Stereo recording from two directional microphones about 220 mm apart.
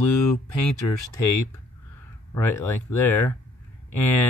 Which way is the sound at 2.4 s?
10° left (ahead or behind).